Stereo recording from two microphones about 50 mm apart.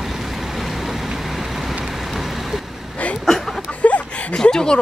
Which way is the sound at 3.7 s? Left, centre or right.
Left.